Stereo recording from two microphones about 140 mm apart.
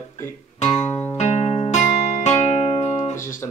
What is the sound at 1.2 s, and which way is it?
Music, 35° left (ahead or behind).